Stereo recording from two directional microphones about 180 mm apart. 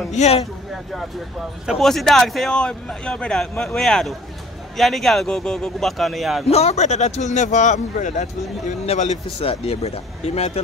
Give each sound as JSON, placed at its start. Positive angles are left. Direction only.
{"t": 0.1, "sound": "speech", "side_deg": 35}
{"t": 1.7, "sound": "a man's voice", "side_deg": 0}
{"t": 6.4, "sound": "speech", "side_deg": 35}